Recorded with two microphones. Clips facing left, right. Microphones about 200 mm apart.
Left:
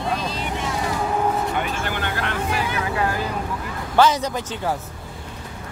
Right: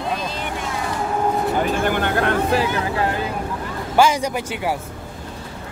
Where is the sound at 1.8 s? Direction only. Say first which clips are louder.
Right 7 dB; 50° right (ahead or behind).